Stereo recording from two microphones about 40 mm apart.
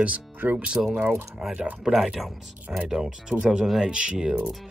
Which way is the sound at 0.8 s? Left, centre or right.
Right.